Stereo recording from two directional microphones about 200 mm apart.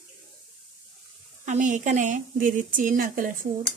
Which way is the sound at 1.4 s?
40° right (ahead or behind).